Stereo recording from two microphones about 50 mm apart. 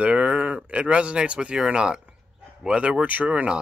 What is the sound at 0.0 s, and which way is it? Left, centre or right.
Speech, right.